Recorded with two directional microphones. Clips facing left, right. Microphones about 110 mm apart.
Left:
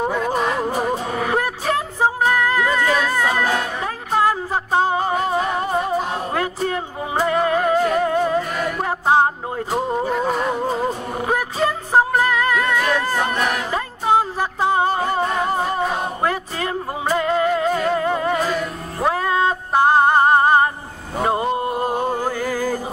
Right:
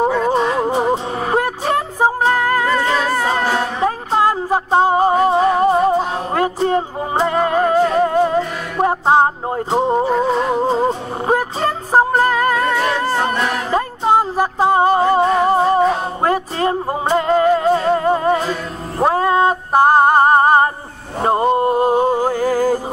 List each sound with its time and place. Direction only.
0.2 s music: 30° right (ahead or behind)
14.3 s music: 40° right (ahead or behind)
21.9 s music: 15° right (ahead or behind)
22.3 s music: 45° right (ahead or behind)